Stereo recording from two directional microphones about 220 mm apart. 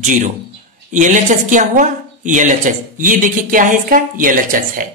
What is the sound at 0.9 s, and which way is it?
A woman's voice, 35° right (ahead or behind).